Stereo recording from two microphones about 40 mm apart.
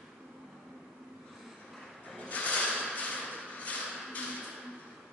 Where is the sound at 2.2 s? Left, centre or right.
Left.